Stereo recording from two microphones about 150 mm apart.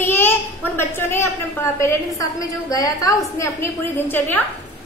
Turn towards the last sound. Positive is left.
turn(degrees=15)  # may be behind; listen again after turning